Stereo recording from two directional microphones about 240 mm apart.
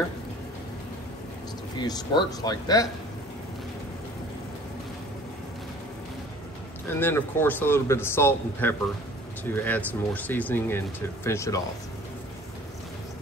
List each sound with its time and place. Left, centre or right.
1.8 s a man's voice: centre
6.9 s a man's voice: centre